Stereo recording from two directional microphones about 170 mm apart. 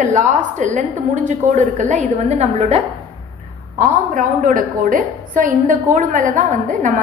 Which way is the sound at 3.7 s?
50° right (ahead or behind).